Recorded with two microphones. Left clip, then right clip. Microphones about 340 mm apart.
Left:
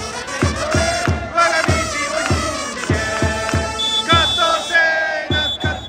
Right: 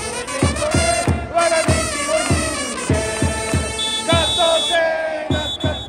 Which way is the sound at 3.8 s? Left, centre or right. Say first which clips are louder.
Left 3 dB; right.